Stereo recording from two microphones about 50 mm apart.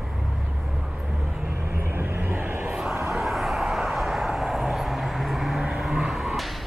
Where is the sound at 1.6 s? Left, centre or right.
Right.